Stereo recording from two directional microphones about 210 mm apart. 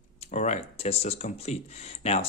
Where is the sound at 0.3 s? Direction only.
35° left (ahead or behind).